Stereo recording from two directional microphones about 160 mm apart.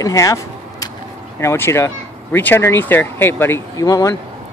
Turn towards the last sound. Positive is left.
turn(degrees=20)  # may be behind; listen again after turning